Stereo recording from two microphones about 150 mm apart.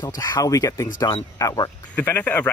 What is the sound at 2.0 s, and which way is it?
Speech, 10° left (ahead or behind).